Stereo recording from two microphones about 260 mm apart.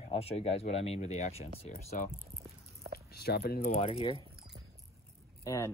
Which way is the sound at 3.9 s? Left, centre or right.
Left.